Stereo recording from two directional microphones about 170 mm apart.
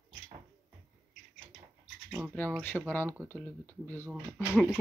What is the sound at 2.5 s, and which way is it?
Speech, 5° left (ahead or behind).